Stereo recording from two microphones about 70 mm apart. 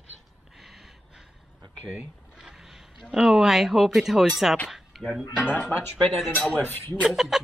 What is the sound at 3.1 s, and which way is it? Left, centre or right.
Speech, centre.